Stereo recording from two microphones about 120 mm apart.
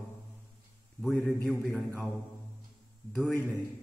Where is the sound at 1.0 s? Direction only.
Centre (ahead or behind).